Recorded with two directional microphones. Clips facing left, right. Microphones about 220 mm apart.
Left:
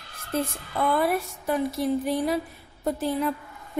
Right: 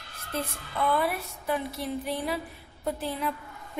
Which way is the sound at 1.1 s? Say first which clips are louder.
Left 5 dB; 45° left (ahead or behind).